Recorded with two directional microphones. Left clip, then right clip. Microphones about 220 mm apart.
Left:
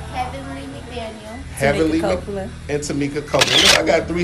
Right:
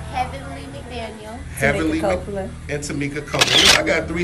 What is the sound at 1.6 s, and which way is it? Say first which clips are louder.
Speech: left 2 dB; 5° left (ahead or behind).